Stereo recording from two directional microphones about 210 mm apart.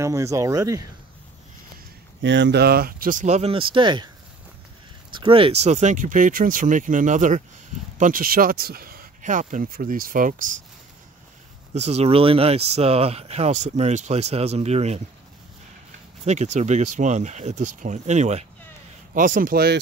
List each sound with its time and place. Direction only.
0.0 s speech: 15° right (ahead or behind)
2.2 s speech: 60° right (ahead or behind); by 4.1 s 20° right (ahead or behind)
5.1 s speech: 25° right (ahead or behind); by 10.6 s 40° right (ahead or behind)
11.7 s speech: 30° right (ahead or behind)
16.3 s speech: 35° right (ahead or behind)